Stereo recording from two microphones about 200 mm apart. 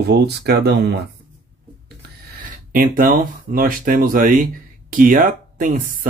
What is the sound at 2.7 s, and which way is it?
Speech, 45° right (ahead or behind).